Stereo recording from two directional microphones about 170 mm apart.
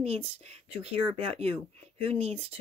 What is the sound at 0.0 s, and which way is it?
Speech, 35° right (ahead or behind).